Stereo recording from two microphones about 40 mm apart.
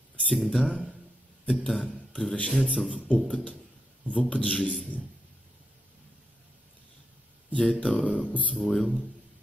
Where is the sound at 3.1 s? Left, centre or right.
Left.